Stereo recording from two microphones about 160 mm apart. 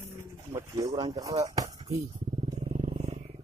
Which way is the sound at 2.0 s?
35° right (ahead or behind).